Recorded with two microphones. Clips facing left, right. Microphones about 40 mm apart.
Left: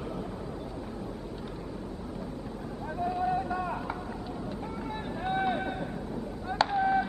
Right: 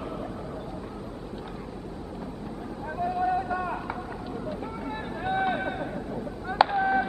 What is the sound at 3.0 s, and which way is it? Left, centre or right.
Vehicle, centre.